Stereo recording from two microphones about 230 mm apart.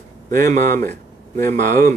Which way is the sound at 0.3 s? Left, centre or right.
Right.